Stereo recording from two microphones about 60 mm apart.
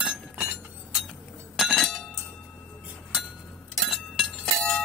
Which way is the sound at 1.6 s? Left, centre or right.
Centre.